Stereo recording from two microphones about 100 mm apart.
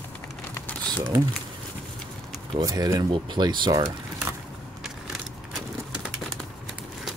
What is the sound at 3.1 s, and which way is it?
Speech, 50° right (ahead or behind).